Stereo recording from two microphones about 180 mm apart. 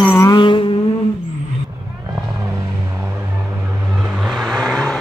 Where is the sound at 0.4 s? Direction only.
25° left (ahead or behind).